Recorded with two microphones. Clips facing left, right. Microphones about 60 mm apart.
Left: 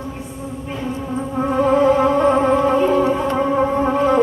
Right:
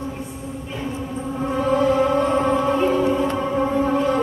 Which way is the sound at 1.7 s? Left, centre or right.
Left.